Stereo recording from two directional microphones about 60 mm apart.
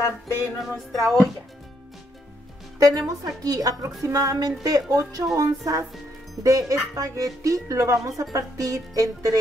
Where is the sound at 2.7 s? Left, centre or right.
Right.